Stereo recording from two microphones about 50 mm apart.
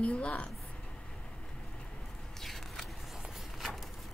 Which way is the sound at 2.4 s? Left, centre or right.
Centre.